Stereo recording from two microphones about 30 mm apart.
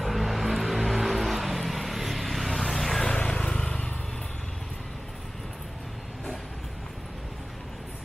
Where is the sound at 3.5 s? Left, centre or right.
Left.